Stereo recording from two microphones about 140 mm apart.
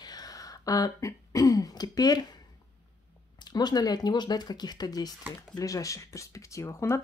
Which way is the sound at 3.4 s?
30° left (ahead or behind).